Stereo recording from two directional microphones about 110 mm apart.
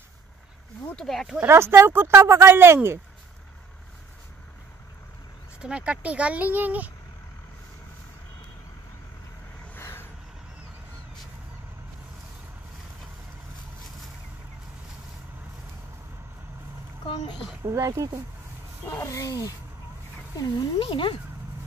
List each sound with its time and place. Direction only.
0.8 s speech: 5° left (ahead or behind)
1.4 s speech: 20° right (ahead or behind)
5.6 s speech: 10° right (ahead or behind)
9.8 s vehicle: 20° left (ahead or behind)
17.6 s speech: 30° right (ahead or behind)
18.9 s speech: 25° left (ahead or behind)
20.3 s speech: 45° left (ahead or behind)